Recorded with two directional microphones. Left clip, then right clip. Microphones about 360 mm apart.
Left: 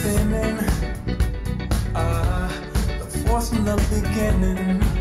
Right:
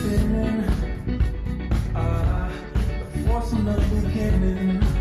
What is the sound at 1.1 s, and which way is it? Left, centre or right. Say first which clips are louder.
Music: left 2 dB; left.